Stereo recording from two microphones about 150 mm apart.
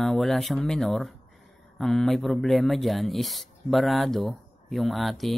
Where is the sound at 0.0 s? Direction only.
Centre (ahead or behind).